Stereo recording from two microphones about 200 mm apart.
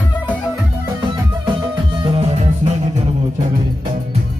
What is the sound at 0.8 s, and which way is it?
Music, 15° right (ahead or behind).